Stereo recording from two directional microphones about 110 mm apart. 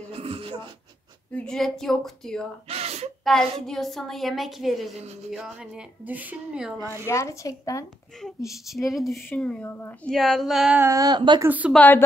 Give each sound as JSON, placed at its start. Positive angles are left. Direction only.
{"t": 0.1, "sound": "a sound", "side_deg": -60}
{"t": 1.3, "sound": "a woman's voice", "side_deg": 5}
{"t": 2.7, "sound": "gasp", "side_deg": -70}
{"t": 3.3, "sound": "a woman's voice", "side_deg": 5}
{"t": 6.8, "sound": "speech", "side_deg": -25}
{"t": 7.1, "sound": "speech", "side_deg": 25}
{"t": 8.5, "sound": "a woman's voice", "side_deg": 0}
{"t": 9.7, "sound": "speech", "side_deg": 20}
{"t": 10.0, "sound": "a woman's voice", "side_deg": 5}
{"t": 10.8, "sound": "speech", "side_deg": -25}
{"t": 11.1, "sound": "speech", "side_deg": -40}
{"t": 11.4, "sound": "a woman's voice", "side_deg": -15}
{"t": 11.7, "sound": "speech", "side_deg": 15}